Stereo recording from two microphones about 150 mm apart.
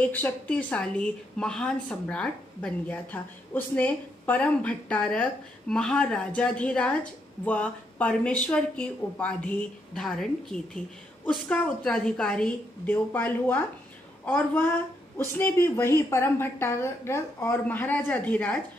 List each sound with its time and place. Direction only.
0.0 s a woman's voice: 10° left (ahead or behind)